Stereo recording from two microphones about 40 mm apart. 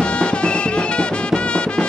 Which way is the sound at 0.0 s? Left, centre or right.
Left.